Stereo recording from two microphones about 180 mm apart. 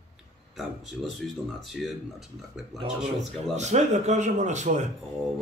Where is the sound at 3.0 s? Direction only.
Centre (ahead or behind).